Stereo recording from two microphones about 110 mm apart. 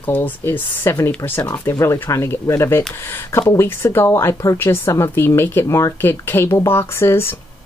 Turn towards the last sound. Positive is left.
turn(degrees=25)  # may be behind; listen again after turning